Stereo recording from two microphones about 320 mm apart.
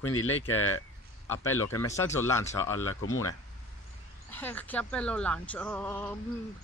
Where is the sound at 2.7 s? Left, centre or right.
Left.